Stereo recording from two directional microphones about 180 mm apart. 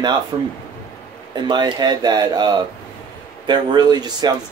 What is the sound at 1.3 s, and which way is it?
Speech, 25° right (ahead or behind).